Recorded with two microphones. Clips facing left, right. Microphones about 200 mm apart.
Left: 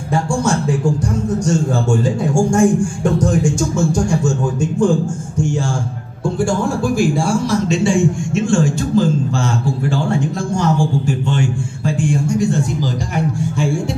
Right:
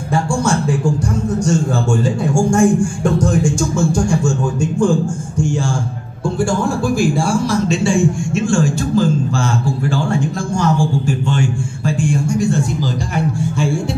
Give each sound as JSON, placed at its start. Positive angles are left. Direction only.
{"t": 0.1, "sound": "music", "side_deg": 20}
{"t": 1.4, "sound": "a man's voice", "side_deg": 20}
{"t": 6.2, "sound": "a man's voice", "side_deg": 20}